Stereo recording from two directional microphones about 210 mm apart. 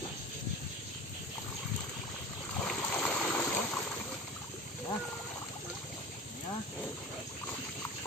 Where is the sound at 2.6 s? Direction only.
5° left (ahead or behind).